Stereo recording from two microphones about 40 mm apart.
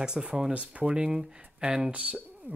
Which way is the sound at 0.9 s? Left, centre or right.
Right.